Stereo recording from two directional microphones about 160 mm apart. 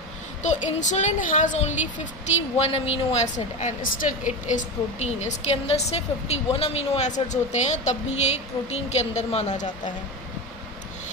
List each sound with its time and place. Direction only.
0.4 s a woman's voice: 50° left (ahead or behind)
2.6 s a woman's voice: 35° left (ahead or behind)